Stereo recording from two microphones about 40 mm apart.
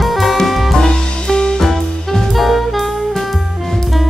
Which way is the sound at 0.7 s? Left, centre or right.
Centre.